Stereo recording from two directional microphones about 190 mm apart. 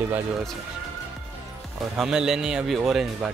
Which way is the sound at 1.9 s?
5° right (ahead or behind).